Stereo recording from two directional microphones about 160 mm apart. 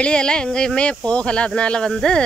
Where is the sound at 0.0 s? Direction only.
5° left (ahead or behind).